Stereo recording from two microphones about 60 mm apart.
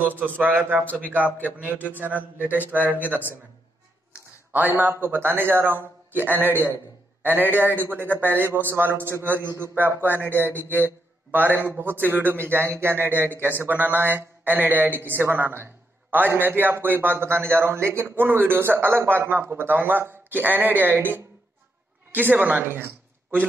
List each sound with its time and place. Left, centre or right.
0.2 s a man's voice: right
4.5 s a man's voice: right